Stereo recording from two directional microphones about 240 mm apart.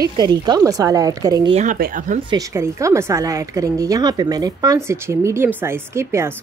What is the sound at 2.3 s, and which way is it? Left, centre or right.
Speech, centre.